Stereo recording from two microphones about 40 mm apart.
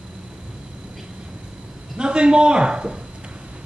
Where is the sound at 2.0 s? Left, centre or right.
Right.